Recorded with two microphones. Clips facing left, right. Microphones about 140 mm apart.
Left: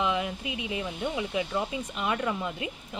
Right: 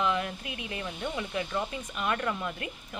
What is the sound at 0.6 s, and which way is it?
Speech, 10° left (ahead or behind).